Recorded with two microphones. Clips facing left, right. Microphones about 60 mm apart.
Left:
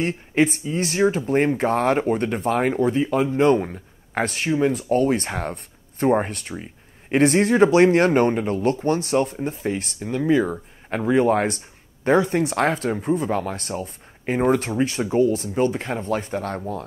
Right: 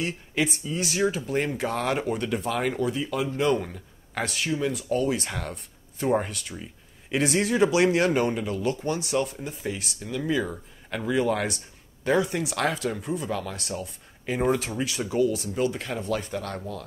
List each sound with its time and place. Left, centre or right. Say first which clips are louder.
0.0 s speech: left 7 dB; left